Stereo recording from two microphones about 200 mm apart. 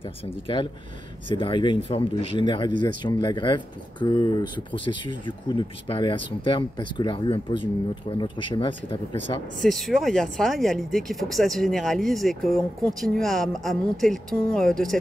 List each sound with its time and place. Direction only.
1.3 s speech: 25° left (ahead or behind)
9.6 s speech: centre (ahead or behind)